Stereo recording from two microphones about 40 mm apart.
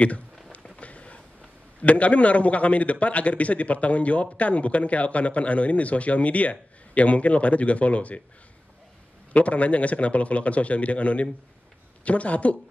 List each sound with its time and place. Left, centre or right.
0.7 s a sound: left
1.8 s a man's voice: left
9.3 s a man's voice: left